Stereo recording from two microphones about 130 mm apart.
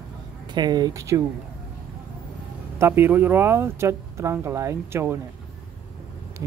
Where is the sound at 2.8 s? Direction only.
20° right (ahead or behind).